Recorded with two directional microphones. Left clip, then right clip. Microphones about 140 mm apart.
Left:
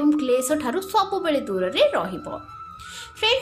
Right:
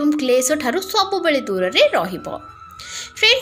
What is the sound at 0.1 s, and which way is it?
A woman's voice, 10° right (ahead or behind).